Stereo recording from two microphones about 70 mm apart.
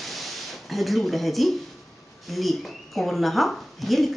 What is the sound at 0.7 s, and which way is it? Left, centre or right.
Speech, centre.